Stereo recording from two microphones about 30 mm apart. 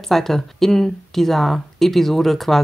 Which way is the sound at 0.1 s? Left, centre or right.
Centre.